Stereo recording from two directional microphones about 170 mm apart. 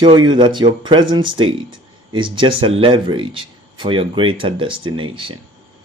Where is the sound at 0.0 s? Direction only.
25° right (ahead or behind).